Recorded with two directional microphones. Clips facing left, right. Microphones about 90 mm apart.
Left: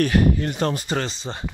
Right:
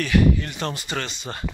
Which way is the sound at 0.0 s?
40° left (ahead or behind).